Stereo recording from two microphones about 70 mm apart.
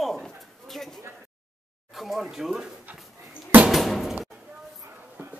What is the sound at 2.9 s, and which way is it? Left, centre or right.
Dog, right.